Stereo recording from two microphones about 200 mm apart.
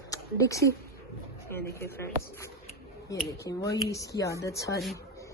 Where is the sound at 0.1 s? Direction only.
15° left (ahead or behind).